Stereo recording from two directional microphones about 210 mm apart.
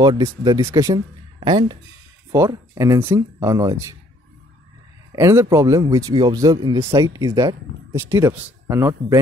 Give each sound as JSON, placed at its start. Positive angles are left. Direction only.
{"t": 0.0, "sound": "speech", "side_deg": -20}
{"t": 2.3, "sound": "speech", "side_deg": -15}
{"t": 5.1, "sound": "speech", "side_deg": -15}